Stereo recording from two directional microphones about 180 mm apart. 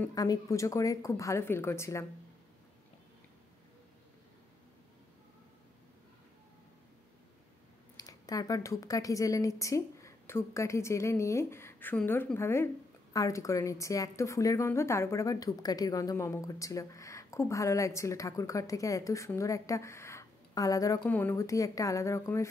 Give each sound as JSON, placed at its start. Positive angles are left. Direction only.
{"t": 0.1, "sound": "a woman's voice", "side_deg": 20}
{"t": 8.0, "sound": "a woman's voice", "side_deg": 20}